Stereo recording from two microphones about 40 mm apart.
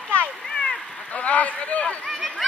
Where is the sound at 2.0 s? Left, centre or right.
Centre.